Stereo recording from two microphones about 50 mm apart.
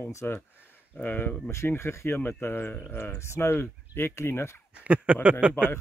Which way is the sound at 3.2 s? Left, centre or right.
Left.